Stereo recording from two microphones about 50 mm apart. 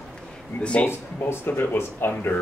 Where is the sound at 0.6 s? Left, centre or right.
Left.